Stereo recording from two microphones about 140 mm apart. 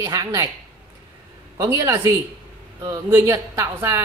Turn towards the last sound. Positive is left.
turn(degrees=-20)  # may be behind; listen again after turning